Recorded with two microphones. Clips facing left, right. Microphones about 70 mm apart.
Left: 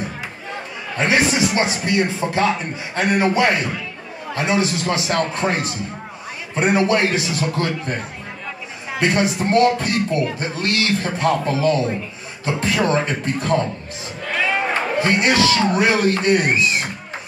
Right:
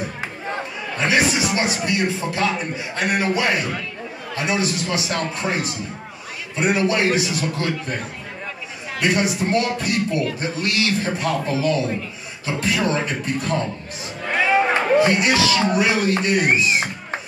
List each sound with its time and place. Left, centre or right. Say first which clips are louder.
0.9 s a man's voice: left 2 dB; left
9.0 s a man's voice: left 1 dB; left
15.0 s speech: left 3 dB; left